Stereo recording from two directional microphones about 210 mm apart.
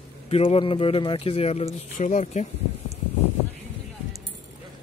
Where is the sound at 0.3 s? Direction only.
25° left (ahead or behind).